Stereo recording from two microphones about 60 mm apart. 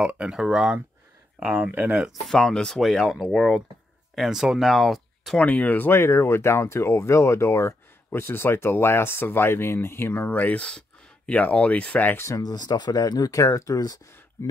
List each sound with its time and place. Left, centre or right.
0.0 s speech: centre
1.4 s speech: right
2.2 s speech: centre
4.1 s speech: centre
5.4 s speech: left
10.3 s speech: left
12.3 s speech: left